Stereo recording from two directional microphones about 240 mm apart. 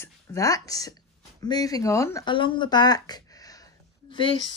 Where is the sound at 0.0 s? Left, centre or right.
Centre.